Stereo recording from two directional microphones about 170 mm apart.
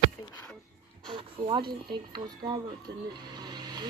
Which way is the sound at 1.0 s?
30° right (ahead or behind).